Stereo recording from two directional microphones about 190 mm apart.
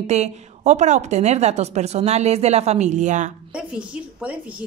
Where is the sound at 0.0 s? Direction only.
35° right (ahead or behind).